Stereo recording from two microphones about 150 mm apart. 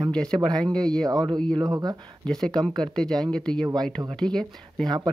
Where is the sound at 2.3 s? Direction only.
5° left (ahead or behind).